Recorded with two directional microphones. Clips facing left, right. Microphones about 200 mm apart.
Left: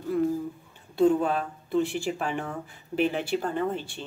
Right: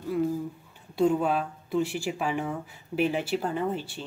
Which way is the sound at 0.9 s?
10° right (ahead or behind).